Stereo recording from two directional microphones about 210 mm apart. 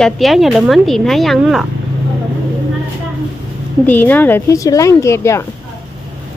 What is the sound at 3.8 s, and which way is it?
Speech, 10° left (ahead or behind).